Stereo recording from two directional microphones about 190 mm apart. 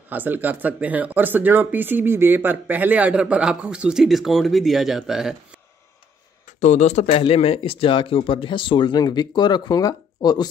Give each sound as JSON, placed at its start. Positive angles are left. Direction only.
{"t": 0.1, "sound": "speech", "side_deg": -10}
{"t": 6.6, "sound": "speech", "side_deg": 35}